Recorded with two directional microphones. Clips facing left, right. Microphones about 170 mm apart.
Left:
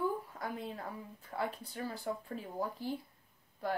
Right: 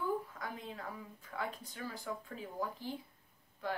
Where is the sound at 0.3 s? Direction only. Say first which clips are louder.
Left 4 dB; 35° left (ahead or behind).